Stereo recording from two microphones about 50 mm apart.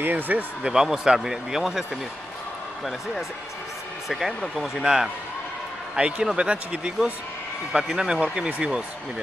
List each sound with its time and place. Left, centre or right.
0.0 s speech: right
0.7 s speech: centre
4.1 s speech: centre; by 8.8 s right